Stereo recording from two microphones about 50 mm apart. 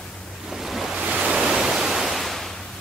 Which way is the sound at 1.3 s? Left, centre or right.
Centre.